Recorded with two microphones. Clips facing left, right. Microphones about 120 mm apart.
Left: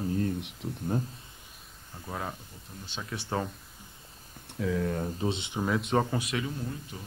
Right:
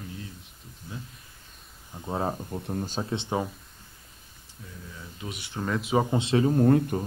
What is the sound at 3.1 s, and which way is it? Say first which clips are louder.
Speech: right 3 dB; 20° right (ahead or behind).